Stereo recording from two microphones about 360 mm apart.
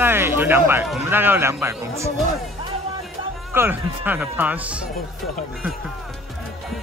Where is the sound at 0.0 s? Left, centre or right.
Centre.